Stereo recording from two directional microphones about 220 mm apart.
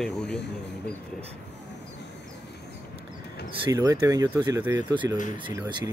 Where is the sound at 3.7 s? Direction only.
15° right (ahead or behind).